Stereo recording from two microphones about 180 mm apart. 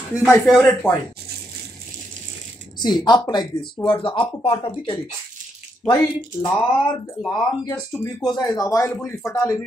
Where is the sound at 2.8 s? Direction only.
25° left (ahead or behind).